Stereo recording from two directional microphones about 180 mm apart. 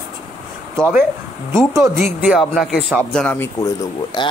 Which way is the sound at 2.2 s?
Centre (ahead or behind).